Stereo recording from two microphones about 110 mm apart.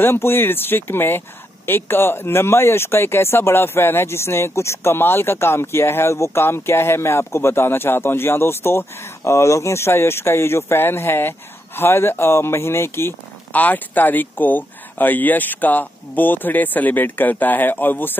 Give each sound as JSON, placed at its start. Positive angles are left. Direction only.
{"t": 0.0, "sound": "speech", "side_deg": 20}